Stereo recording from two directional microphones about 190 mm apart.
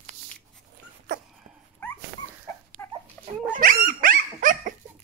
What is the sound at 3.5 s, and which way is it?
Dog, 45° right (ahead or behind).